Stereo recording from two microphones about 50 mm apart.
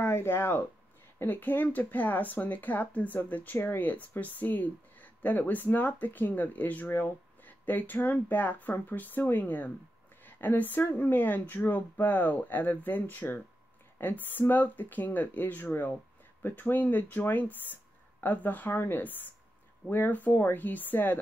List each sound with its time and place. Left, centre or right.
0.0 s speech: left
1.2 s speech: left
6.9 s speech: left